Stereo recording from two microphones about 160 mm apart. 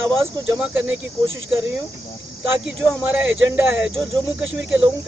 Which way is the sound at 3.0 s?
10° right (ahead or behind).